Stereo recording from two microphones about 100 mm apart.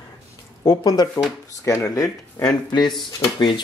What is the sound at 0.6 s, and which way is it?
Speech, 35° left (ahead or behind).